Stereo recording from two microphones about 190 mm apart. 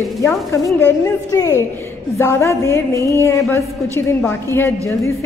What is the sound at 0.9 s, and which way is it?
A woman's voice, 15° left (ahead or behind).